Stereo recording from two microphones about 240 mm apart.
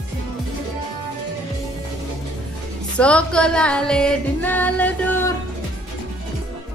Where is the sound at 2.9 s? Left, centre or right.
Centre.